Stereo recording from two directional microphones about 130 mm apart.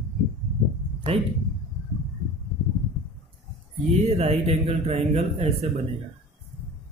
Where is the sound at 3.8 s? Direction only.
55° right (ahead or behind).